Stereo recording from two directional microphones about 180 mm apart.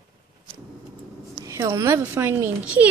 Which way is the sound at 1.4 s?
15° right (ahead or behind).